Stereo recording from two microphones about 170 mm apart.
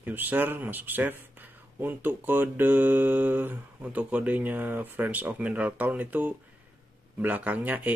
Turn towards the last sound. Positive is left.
turn(degrees=-10)  # may be behind; listen again after turning